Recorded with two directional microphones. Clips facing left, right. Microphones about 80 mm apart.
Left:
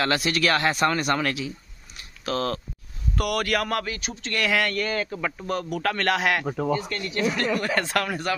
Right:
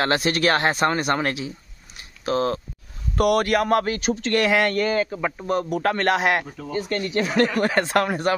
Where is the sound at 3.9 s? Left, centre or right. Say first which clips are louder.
Right 9 dB; right.